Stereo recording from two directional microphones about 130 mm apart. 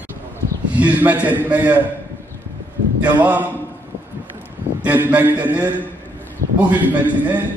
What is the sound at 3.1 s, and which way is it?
Speech, 15° right (ahead or behind).